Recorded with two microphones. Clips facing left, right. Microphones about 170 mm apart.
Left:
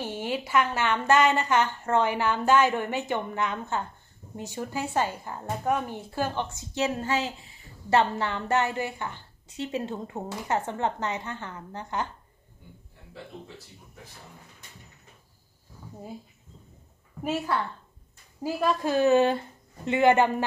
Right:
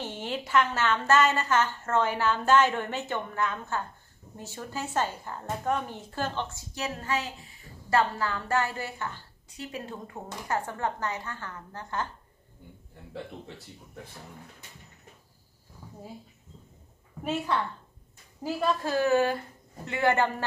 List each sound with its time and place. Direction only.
0.0 s a woman's voice: 10° left (ahead or behind)
6.7 s a woman's voice: 25° left (ahead or behind)
17.2 s a woman's voice: 5° left (ahead or behind)